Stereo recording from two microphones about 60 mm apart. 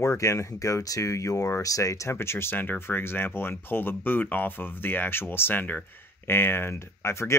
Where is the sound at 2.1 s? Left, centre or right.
Left.